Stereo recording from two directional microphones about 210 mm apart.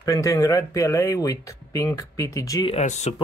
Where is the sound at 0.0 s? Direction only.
15° left (ahead or behind).